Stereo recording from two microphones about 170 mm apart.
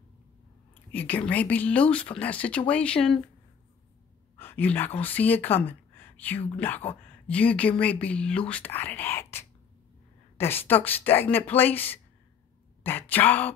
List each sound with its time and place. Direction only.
0.9 s speech: 10° left (ahead or behind)
4.4 s speech: 10° left (ahead or behind)